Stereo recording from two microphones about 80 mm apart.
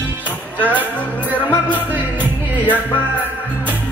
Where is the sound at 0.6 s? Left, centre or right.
Centre.